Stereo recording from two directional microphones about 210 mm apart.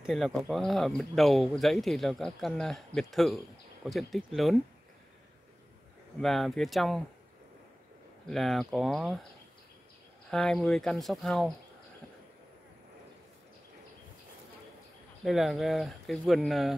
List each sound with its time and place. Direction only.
0.0 s speech: centre (ahead or behind)
6.2 s speech: centre (ahead or behind)
8.3 s speech: centre (ahead or behind)
10.3 s speech: 5° left (ahead or behind)
15.2 s speech: centre (ahead or behind)